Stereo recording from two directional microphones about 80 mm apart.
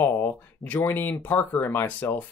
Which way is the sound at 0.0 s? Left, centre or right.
Left.